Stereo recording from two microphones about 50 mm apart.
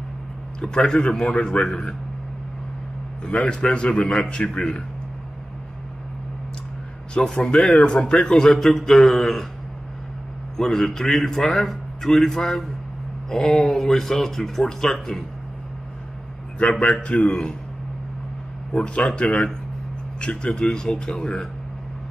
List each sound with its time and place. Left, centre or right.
0.6 s a man's voice: centre
3.3 s a man's voice: left
7.3 s a man's voice: left; by 9.5 s centre
10.6 s a man's voice: centre
16.8 s a man's voice: left
18.7 s a man's voice: centre